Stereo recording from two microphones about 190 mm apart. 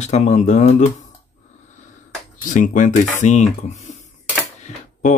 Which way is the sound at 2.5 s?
40° left (ahead or behind).